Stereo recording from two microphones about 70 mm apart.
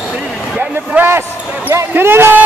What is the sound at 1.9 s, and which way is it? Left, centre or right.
Speech, right.